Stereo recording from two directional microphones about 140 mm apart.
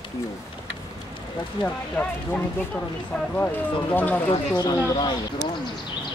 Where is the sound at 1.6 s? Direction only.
10° left (ahead or behind).